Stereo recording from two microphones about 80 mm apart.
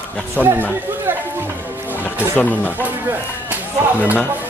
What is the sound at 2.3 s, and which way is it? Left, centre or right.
Speech, left.